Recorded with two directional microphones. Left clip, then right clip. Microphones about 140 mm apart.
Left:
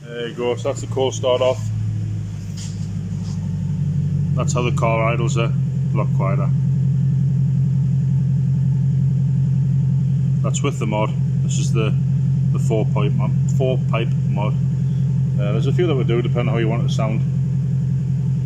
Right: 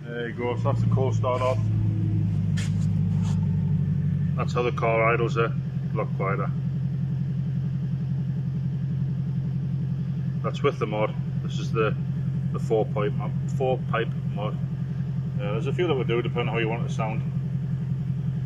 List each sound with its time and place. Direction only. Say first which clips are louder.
0.5 s speech: left 7 dB; 30° left (ahead or behind)
1.2 s speech: left 8 dB; 45° left (ahead or behind)
4.4 s speech: left 4 dB; 35° left (ahead or behind)
12.6 s speech: left 1 dB; 30° left (ahead or behind)
15.8 s speech: left 4 dB; 40° left (ahead or behind)